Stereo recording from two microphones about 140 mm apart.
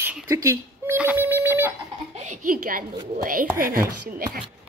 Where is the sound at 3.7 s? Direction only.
90° right.